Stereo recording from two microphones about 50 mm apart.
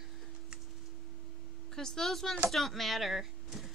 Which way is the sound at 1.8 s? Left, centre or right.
Centre.